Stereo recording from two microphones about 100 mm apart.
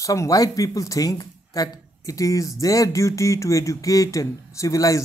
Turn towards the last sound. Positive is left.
turn(degrees=35)  # may be behind; listen again after turning